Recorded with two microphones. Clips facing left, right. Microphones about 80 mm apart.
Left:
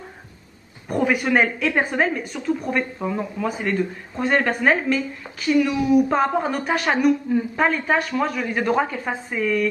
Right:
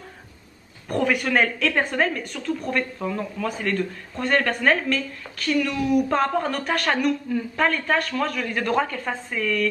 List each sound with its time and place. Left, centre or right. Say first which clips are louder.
0.8 s a woman's voice: left 2 dB; centre